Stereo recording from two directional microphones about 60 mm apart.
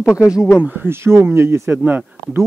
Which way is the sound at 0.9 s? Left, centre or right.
Right.